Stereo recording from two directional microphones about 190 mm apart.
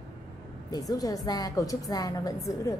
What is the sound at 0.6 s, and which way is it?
A woman's voice, 20° left (ahead or behind).